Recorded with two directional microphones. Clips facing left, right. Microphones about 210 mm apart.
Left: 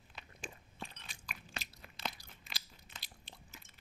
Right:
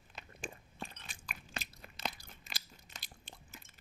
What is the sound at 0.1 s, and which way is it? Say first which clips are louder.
Biting: right 3 dB; 50° right (ahead or behind).